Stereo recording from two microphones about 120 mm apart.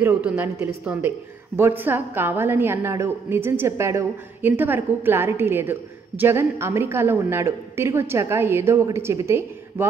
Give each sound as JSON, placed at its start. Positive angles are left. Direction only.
{"t": 0.2, "sound": "a woman's voice", "side_deg": -15}